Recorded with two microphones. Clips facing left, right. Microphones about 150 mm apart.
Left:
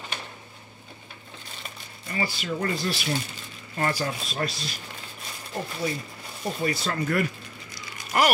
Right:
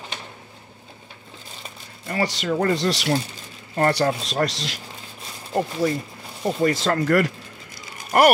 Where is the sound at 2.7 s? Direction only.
85° right.